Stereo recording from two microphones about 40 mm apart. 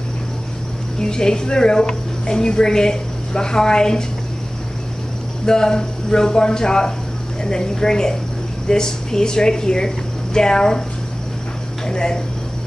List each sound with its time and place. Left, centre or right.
0.9 s a woman's voice: centre
5.4 s a woman's voice: centre
11.8 s a woman's voice: centre